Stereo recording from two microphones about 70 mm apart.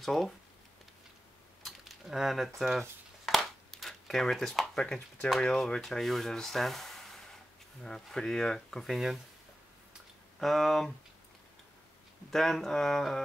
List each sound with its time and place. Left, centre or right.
0.0 s speech: centre
1.6 s speech: centre
3.3 s a sound: centre
5.4 s speech: centre
10.4 s speech: centre
12.3 s speech: centre